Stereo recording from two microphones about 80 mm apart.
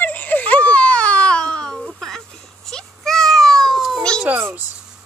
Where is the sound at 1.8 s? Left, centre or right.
Centre.